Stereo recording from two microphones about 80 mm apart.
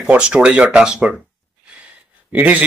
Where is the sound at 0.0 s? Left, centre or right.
Centre.